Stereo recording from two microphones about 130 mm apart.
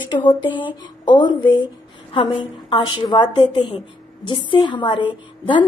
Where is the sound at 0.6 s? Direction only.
35° left (ahead or behind).